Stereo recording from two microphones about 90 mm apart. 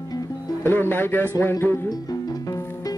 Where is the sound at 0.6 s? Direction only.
25° left (ahead or behind).